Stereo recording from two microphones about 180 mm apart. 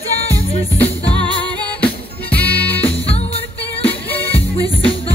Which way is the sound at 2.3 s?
10° left (ahead or behind).